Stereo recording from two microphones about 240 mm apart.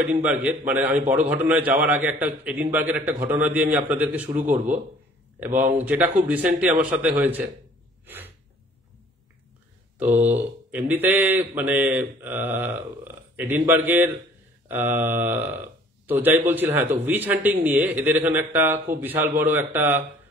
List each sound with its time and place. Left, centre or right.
0.1 s speech: centre
8.0 s gasp: centre
10.1 s speech: centre